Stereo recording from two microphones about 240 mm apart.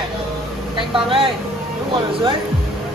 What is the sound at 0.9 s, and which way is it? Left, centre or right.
Speech, right.